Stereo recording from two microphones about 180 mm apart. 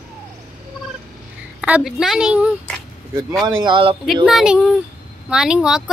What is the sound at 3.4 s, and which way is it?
Speech, 25° right (ahead or behind).